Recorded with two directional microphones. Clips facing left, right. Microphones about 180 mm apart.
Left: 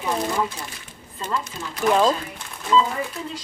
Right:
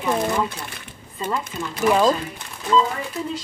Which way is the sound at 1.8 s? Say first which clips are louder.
Right 1 dB; 5° right (ahead or behind).